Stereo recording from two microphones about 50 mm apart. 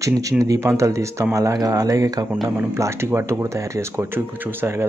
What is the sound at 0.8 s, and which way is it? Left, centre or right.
Speech, right.